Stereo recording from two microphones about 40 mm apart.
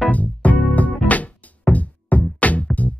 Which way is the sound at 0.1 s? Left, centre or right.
Left.